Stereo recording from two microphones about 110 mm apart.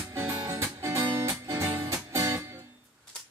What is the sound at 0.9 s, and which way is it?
Music, 25° right (ahead or behind).